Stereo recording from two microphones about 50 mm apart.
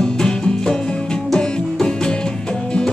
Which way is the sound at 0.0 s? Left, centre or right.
Centre.